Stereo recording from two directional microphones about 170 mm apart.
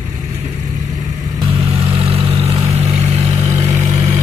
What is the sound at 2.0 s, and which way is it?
Vehicle, 35° right (ahead or behind).